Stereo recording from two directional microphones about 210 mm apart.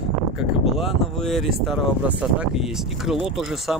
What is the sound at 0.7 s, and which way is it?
Speech, centre (ahead or behind).